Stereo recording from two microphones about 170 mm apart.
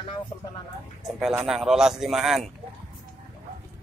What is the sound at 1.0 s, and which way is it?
Speech, 5° right (ahead or behind).